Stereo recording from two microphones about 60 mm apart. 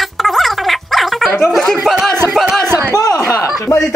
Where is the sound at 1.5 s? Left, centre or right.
Centre.